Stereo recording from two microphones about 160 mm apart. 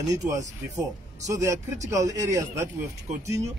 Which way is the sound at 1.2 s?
20° right (ahead or behind).